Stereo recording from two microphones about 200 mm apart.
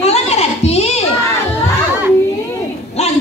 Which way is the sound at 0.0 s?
30° left (ahead or behind).